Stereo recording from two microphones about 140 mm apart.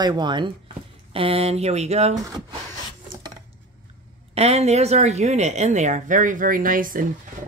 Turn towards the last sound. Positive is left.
turn(degrees=-75)  # may be behind; listen again after turning